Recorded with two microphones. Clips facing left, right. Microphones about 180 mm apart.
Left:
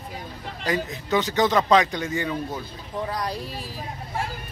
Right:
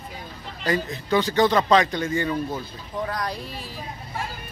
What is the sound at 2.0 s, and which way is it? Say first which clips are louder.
Speech: right 2 dB; 5° left (ahead or behind).